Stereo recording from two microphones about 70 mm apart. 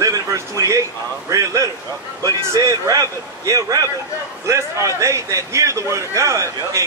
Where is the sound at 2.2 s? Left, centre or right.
Right.